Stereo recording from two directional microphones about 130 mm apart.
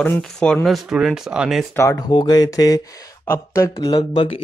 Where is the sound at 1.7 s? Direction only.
25° left (ahead or behind).